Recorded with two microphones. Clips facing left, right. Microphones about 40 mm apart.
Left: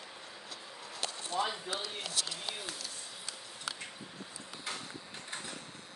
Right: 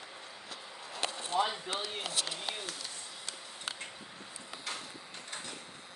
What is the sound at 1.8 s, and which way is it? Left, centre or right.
Speech, right.